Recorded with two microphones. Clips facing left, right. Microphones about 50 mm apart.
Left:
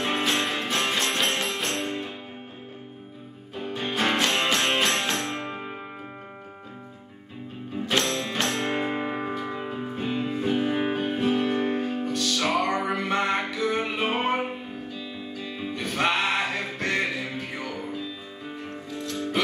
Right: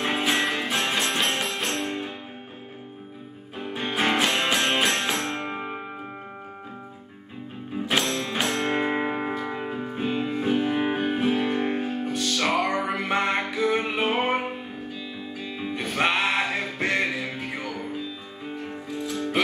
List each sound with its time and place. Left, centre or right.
0.0 s music: centre
3.5 s music: centre
5.4 s music: right
7.7 s music: centre
12.5 s music: centre
13.1 s music: centre
15.4 s music: centre